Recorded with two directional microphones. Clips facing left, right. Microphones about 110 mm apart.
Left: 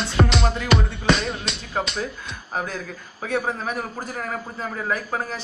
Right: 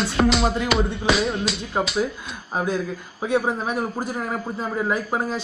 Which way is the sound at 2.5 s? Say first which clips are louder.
Right 5 dB; 15° right (ahead or behind).